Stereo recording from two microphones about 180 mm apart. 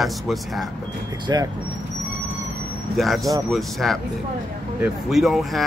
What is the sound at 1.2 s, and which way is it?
Speech, 25° right (ahead or behind).